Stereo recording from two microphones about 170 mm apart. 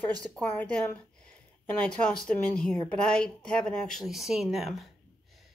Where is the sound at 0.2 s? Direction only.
10° left (ahead or behind).